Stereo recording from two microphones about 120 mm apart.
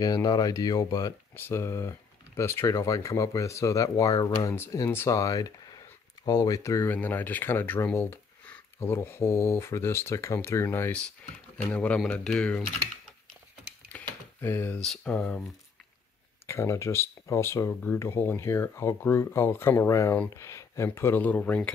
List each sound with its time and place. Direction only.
0.0 s speech: 30° left (ahead or behind); by 12.6 s 10° left (ahead or behind)
13.9 s a sound: 15° left (ahead or behind)
14.8 s speech: 5° left (ahead or behind)
16.4 s speech: 20° left (ahead or behind)